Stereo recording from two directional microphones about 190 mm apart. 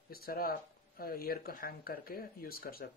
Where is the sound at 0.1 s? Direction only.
50° left (ahead or behind).